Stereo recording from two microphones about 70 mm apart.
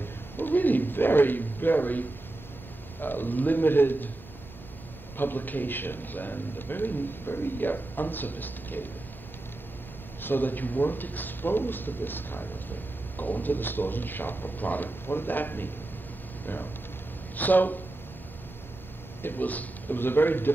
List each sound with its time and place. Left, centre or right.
0.0 s a sound: left
3.0 s a man's voice: left
5.1 s a man's voice: left
10.2 s a man's voice: left
17.4 s a man's voice: left
19.2 s a man's voice: left